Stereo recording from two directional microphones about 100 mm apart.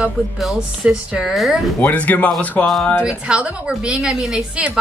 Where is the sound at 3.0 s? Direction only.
10° right (ahead or behind).